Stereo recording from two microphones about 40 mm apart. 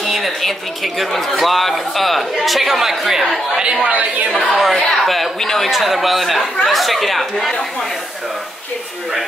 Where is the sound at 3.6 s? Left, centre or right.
Right.